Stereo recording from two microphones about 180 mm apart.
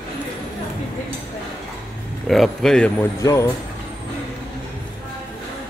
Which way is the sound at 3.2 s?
15° left (ahead or behind).